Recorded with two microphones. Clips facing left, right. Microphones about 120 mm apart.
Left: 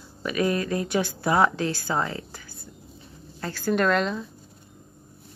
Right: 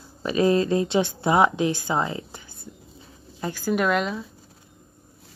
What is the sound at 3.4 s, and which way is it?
Speech, 15° right (ahead or behind).